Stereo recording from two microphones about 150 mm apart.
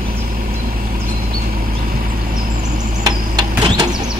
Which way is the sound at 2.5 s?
55° right (ahead or behind).